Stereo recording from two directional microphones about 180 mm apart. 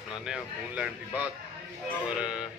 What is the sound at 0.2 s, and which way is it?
A man's voice, 5° right (ahead or behind).